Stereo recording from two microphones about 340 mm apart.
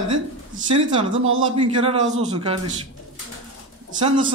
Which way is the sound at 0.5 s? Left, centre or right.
Centre.